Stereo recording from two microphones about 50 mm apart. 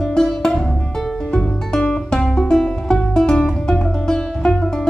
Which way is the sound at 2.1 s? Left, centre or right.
Centre.